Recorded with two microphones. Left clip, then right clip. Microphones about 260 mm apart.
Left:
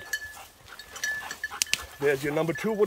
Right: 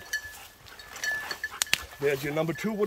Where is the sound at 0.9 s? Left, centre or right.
Left.